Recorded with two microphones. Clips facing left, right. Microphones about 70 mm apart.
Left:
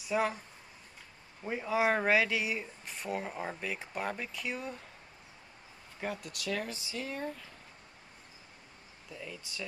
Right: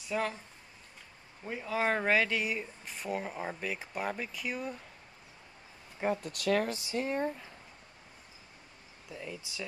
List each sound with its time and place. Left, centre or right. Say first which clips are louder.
0.1 s speech: left 2 dB; centre
1.4 s speech: left 2 dB; centre
5.9 s speech: right 6 dB; right
6.3 s speech: right 7 dB; right
7.0 s speech: right 6 dB; right
9.1 s speech: right 2 dB; centre